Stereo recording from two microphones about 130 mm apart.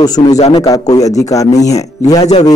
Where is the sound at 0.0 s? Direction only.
30° left (ahead or behind).